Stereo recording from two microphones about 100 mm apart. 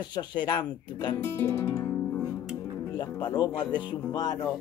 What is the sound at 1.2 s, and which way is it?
Speech, 25° left (ahead or behind).